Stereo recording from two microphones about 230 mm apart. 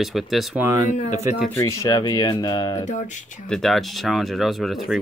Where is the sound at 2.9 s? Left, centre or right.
Left.